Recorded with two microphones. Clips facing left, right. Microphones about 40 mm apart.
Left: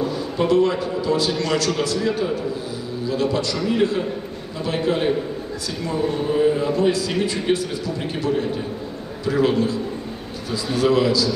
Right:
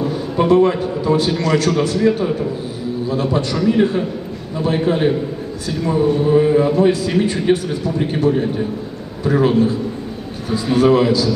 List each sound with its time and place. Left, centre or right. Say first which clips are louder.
0.4 s a man's voice: right 5 dB; right